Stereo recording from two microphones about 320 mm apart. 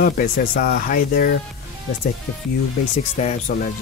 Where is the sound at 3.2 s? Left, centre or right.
Left.